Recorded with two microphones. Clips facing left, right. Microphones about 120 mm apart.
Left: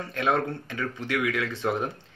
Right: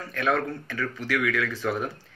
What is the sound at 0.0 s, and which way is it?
Speech, 25° left (ahead or behind).